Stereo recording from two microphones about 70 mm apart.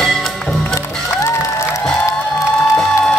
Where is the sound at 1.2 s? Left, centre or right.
Left.